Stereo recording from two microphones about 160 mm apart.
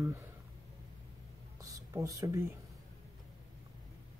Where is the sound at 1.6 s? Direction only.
20° right (ahead or behind).